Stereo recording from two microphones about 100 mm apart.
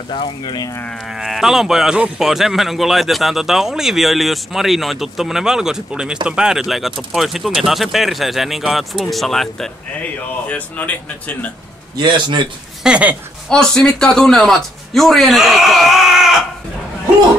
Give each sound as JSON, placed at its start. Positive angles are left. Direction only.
{"t": 0.1, "sound": "speech", "side_deg": 55}
{"t": 1.1, "sound": "speech", "side_deg": 0}
{"t": 10.5, "sound": "speech", "side_deg": 15}
{"t": 12.0, "sound": "a man's voice", "side_deg": -50}
{"t": 12.8, "sound": "speech", "side_deg": -10}
{"t": 13.5, "sound": "speech", "side_deg": 5}